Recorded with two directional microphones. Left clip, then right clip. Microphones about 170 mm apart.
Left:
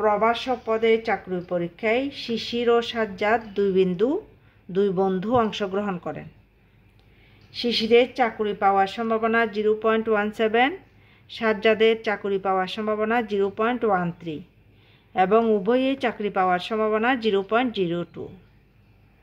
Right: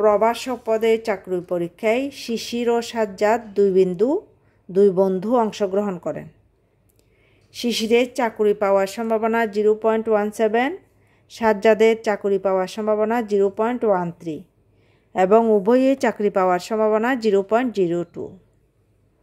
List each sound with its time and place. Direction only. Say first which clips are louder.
0.0 s speech: right 4 dB; 60° right (ahead or behind); by 6.2 s 35° right (ahead or behind)
7.5 s speech: even; 55° right (ahead or behind); by 18.2 s 35° right (ahead or behind)